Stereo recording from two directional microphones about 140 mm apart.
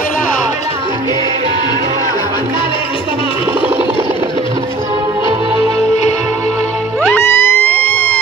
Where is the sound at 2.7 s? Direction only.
40° left (ahead or behind).